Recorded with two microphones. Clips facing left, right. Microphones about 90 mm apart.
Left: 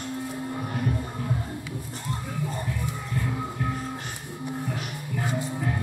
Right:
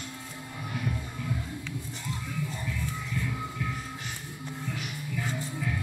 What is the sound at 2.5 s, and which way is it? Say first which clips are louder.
Music: left 4 dB; 45° left (ahead or behind).